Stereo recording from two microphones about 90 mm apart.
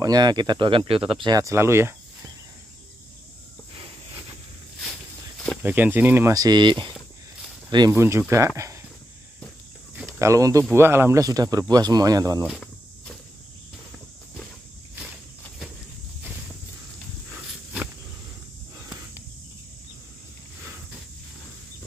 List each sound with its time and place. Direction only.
0.0 s speech: 50° right (ahead or behind); by 1.1 s 85° right
1.2 s speech: 45° right (ahead or behind)
1.5 s speech: 30° right (ahead or behind)
5.6 s speech: 20° right (ahead or behind)
6.3 s speech: 50° right (ahead or behind)
7.9 s speech: 25° right (ahead or behind)
10.0 s speech: 35° right (ahead or behind)
10.7 s speech: 25° right (ahead or behind)
11.2 s speech: 45° right (ahead or behind)